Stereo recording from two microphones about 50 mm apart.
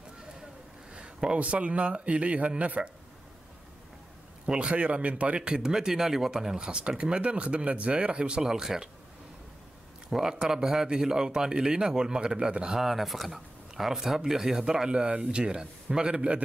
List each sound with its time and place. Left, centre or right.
0.9 s speech: centre
4.5 s speech: right
10.0 s speech: centre
12.8 s speech: centre; by 16.4 s right